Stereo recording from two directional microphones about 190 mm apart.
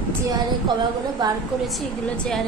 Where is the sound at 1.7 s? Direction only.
Centre (ahead or behind).